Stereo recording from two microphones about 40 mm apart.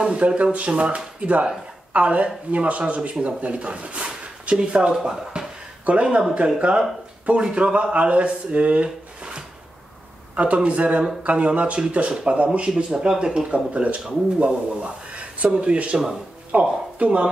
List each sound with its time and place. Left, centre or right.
0.0 s speech: right
5.9 s a man's voice: right